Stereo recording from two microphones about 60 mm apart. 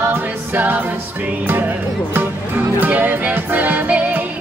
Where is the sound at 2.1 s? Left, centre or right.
Right.